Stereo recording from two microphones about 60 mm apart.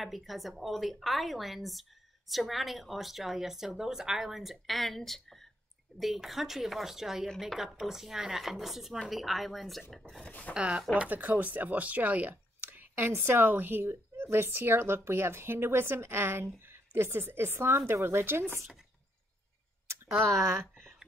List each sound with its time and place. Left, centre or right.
0.0 s speech: centre
10.5 s speech: centre
11.0 s speech: right
20.2 s speech: right